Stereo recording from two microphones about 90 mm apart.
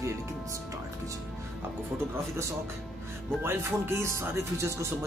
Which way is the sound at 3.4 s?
25° right (ahead or behind).